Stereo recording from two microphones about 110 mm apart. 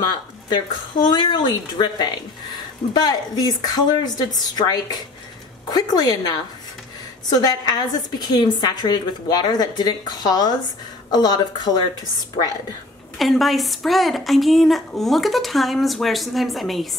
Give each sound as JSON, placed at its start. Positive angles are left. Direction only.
{"t": 0.5, "sound": "a woman's voice", "side_deg": 45}
{"t": 13.2, "sound": "a woman's voice", "side_deg": 0}